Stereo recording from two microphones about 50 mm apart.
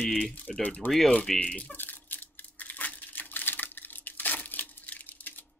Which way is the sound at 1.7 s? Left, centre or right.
Left.